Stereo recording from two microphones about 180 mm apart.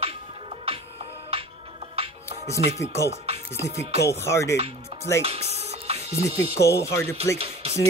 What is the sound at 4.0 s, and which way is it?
Speech, 15° left (ahead or behind).